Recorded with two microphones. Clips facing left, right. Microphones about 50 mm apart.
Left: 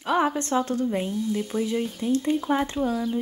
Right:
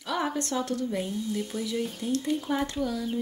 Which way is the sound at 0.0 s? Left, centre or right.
Left.